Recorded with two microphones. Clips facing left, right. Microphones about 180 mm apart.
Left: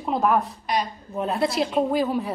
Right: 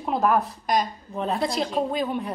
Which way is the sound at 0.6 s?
45° right (ahead or behind).